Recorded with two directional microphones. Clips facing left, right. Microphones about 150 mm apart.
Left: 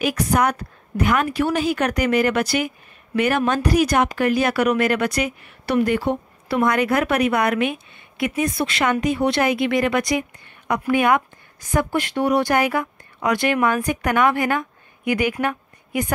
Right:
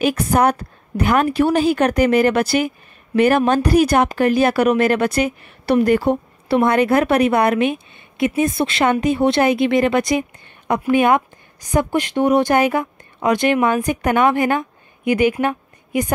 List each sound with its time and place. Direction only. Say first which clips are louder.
0.0 s speech: right 4 dB; 30° right (ahead or behind)
6.5 s a woman's voice: right 4 dB; 30° right (ahead or behind)